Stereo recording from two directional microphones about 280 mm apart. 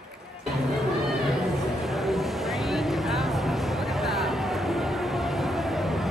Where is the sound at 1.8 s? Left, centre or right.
Centre.